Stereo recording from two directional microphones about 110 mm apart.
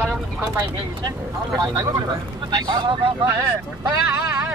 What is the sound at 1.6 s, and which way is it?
Speech, 35° right (ahead or behind).